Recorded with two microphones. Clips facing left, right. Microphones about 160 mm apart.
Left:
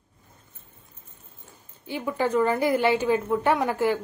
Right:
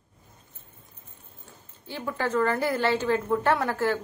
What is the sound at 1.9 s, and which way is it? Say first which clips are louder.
A woman's voice: left 4 dB; 15° left (ahead or behind).